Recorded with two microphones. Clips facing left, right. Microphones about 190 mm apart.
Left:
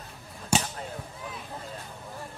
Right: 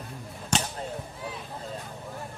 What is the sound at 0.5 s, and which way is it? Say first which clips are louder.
Basketball bounce: left 2 dB; 5° left (ahead or behind).